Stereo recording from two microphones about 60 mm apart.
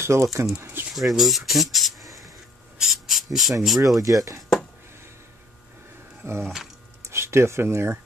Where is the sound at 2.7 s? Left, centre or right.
Centre.